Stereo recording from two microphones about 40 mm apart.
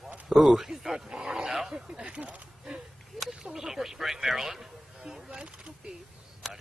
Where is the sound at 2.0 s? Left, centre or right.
Right.